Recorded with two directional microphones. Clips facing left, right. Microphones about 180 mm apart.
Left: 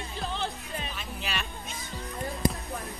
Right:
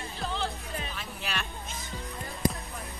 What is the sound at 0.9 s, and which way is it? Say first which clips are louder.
Music: left 1 dB; 15° left (ahead or behind).